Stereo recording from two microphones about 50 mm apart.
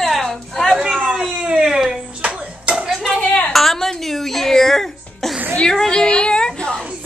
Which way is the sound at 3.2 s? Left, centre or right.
Left.